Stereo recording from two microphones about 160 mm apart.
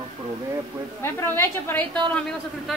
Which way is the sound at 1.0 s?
15° left (ahead or behind).